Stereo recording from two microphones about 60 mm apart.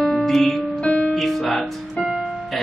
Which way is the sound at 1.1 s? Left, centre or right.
Centre.